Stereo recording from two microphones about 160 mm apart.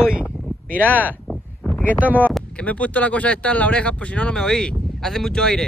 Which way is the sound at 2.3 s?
5° left (ahead or behind).